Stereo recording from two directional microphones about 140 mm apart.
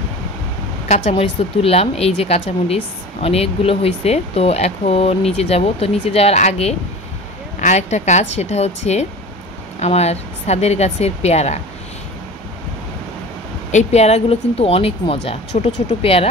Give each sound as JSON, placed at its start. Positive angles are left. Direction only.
{"t": 0.8, "sound": "speech", "side_deg": 60}
{"t": 1.1, "sound": "speech", "side_deg": 45}
{"t": 13.7, "sound": "speech", "side_deg": 55}